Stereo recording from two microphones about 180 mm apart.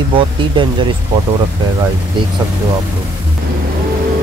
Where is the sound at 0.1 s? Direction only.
30° right (ahead or behind).